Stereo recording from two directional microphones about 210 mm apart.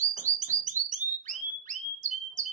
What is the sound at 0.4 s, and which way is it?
Alarm, 35° right (ahead or behind).